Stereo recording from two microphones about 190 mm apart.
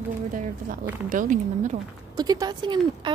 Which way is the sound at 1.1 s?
45° right (ahead or behind).